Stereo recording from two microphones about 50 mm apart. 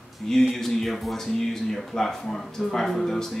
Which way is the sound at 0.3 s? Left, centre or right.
Centre.